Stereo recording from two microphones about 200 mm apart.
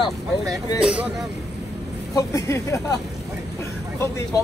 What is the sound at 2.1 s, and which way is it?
Speech, 15° left (ahead or behind).